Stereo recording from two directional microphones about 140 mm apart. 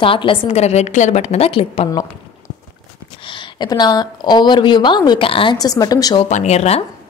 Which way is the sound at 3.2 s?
35° left (ahead or behind).